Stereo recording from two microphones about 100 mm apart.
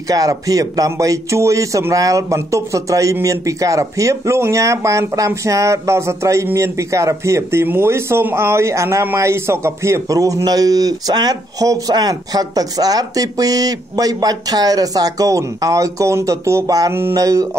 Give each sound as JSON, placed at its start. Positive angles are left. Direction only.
{"t": 0.1, "sound": "speech", "side_deg": -35}